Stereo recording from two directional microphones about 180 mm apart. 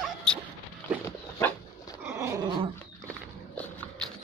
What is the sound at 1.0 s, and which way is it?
Dog, 15° left (ahead or behind).